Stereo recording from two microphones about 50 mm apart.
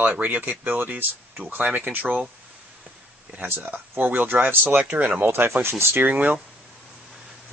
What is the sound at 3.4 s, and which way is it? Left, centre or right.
Speech, right.